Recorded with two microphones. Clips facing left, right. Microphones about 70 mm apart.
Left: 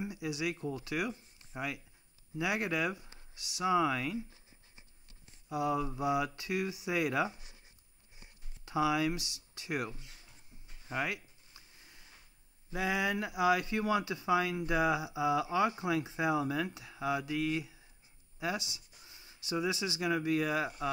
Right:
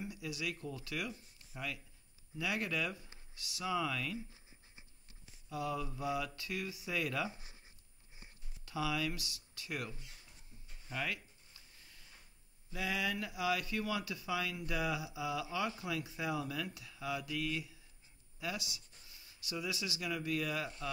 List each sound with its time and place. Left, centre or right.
0.0 s speech: left
2.3 s speech: left
5.5 s speech: left
8.6 s speech: left
11.5 s a sound: left
12.7 s speech: left